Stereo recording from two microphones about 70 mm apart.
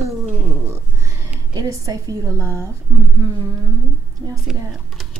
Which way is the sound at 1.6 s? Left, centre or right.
Right.